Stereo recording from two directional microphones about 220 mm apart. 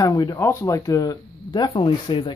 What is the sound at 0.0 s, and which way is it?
Speech, 15° left (ahead or behind).